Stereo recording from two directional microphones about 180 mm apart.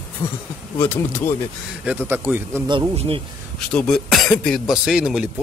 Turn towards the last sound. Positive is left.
turn(degrees=-5)  # may be behind; listen again after turning